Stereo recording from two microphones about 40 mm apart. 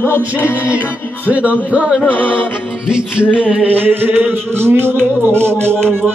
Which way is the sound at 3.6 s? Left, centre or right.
Right.